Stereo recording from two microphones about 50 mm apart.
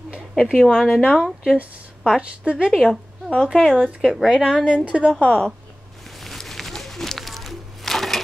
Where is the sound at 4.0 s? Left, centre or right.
Centre.